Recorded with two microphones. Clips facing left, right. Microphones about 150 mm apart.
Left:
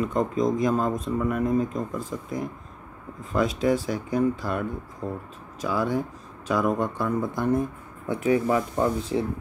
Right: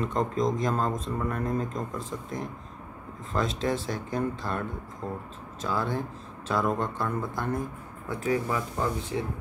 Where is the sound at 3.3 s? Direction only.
10° left (ahead or behind).